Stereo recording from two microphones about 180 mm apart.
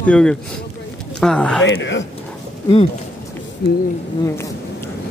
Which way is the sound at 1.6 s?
90° left.